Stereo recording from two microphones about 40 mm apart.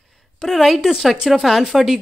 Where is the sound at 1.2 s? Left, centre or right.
Centre.